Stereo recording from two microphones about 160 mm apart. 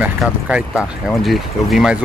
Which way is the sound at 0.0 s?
5° right (ahead or behind).